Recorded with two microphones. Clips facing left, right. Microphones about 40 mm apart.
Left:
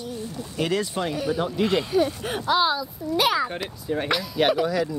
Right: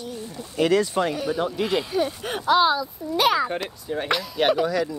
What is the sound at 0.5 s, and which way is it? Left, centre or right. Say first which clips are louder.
Speech: right 5 dB; right.